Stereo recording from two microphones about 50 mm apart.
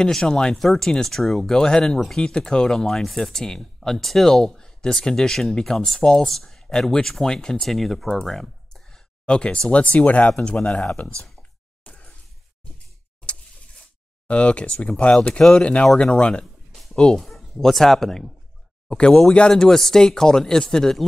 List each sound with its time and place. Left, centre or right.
0.0 s speech: centre
1.6 s speech: centre
10.6 s speech: centre
11.8 s a sound: left
14.2 s speech: left
17.2 s a sound: centre
17.6 s speech: centre
18.9 s speech: centre
19.5 s speech: centre